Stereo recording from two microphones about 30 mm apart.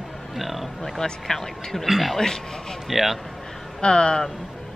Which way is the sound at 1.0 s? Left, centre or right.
Centre.